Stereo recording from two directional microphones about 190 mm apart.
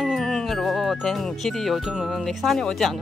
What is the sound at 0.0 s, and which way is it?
Speech, centre (ahead or behind).